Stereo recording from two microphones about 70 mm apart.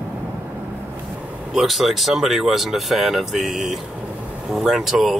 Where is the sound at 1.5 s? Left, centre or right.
Centre.